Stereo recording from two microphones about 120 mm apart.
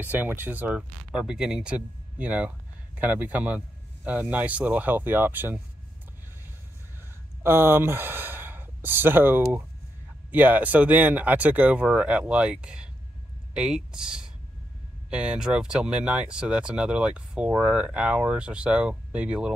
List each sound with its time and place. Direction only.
0.0 s speech: 15° right (ahead or behind)
7.4 s speech: 20° right (ahead or behind)